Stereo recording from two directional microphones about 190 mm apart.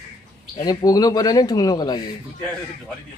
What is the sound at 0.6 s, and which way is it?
Speech, 20° left (ahead or behind).